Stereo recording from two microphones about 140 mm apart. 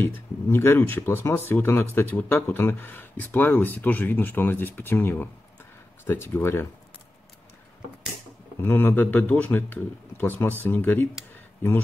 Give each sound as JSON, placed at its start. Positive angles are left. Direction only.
{"t": 0.0, "sound": "speech", "side_deg": 15}
{"t": 8.6, "sound": "speech", "side_deg": 15}